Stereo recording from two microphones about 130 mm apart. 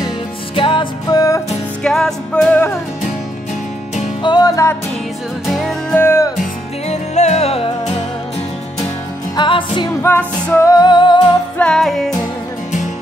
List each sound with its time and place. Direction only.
0.6 s music: 40° left (ahead or behind)
1.8 s music: 5° left (ahead or behind)
2.5 s music: 20° left (ahead or behind)
4.2 s music: 35° left (ahead or behind)
5.5 s music: centre (ahead or behind)
5.9 s music: 20° left (ahead or behind)
6.9 s music: 60° left (ahead or behind)
9.4 s music: 40° left (ahead or behind)
10.0 s music: 20° left (ahead or behind); by 11.1 s 35° left (ahead or behind)
11.5 s music: 5° left (ahead or behind)